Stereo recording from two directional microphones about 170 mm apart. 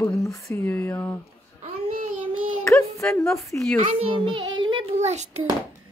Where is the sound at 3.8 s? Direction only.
30° right (ahead or behind).